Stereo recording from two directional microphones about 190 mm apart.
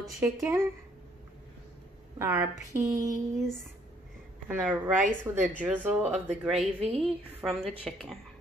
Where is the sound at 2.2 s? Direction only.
10° right (ahead or behind).